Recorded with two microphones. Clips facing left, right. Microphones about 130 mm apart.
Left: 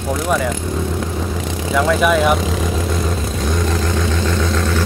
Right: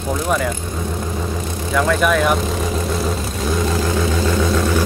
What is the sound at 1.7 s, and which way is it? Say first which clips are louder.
Speech: left 2 dB; 5° left (ahead or behind).